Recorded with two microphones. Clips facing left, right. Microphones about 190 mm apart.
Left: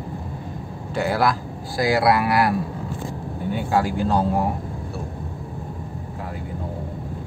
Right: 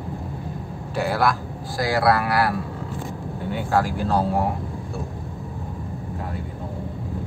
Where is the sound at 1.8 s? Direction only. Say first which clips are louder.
Left 2 dB; 15° left (ahead or behind).